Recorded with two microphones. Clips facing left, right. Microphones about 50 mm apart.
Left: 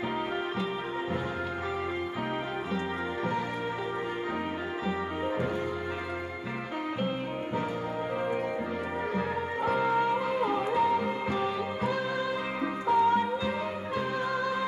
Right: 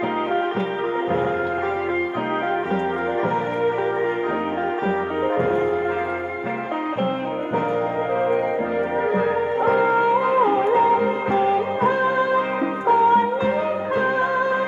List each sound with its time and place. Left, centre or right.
9.1 s music: right